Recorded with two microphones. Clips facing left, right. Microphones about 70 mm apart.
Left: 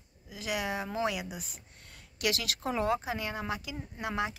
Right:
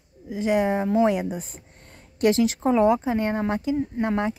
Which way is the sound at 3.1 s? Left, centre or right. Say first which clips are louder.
Right 11 dB; right.